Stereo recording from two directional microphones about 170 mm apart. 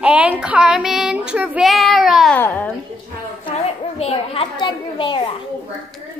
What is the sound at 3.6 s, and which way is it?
A woman's voice, 35° left (ahead or behind).